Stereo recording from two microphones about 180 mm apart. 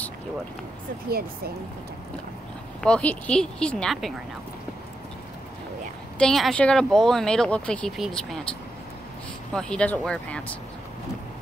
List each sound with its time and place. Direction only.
1.0 s speech: 60° right (ahead or behind)
2.8 s speech: 5° left (ahead or behind)
6.1 s speech: centre (ahead or behind)